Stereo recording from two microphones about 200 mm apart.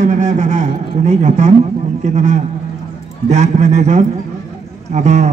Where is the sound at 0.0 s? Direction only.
35° right (ahead or behind).